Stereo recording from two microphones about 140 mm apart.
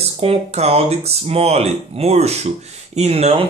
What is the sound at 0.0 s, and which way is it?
Speech, 45° right (ahead or behind).